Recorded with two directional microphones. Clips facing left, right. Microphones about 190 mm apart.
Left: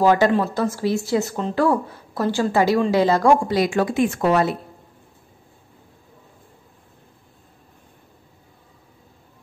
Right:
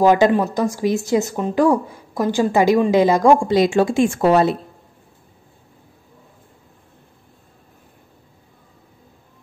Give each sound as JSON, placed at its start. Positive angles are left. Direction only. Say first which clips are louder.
{"t": 0.0, "sound": "a woman's voice", "louder": "right 3 dB", "side_deg": -15}